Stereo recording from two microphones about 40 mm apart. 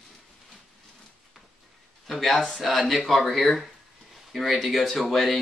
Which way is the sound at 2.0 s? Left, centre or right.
Centre.